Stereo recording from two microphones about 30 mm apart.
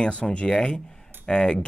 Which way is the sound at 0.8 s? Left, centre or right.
Left.